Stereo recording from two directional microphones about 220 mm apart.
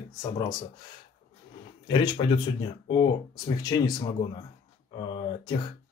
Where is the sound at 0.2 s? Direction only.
15° left (ahead or behind).